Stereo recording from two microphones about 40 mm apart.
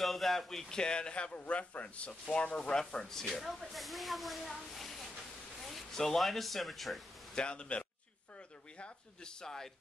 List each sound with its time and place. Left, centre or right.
0.0 s speech: centre
0.7 s a man's voice: left
1.4 s a man's voice: left
2.8 s speech: centre
7.3 s a man's voice: left
9.4 s a man's voice: centre